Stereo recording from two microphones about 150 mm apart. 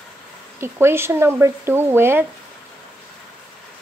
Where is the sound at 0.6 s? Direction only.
15° right (ahead or behind).